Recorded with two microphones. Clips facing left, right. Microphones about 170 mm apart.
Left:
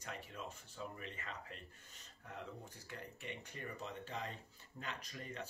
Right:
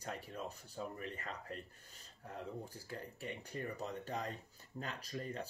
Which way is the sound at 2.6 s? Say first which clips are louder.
Right 4 dB; 35° right (ahead or behind).